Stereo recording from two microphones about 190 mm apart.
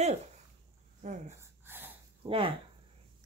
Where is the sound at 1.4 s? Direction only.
10° right (ahead or behind).